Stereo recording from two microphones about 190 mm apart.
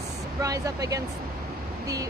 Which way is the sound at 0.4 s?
15° right (ahead or behind).